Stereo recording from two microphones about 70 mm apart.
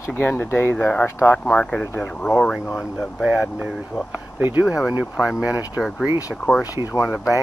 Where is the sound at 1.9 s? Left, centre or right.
Left.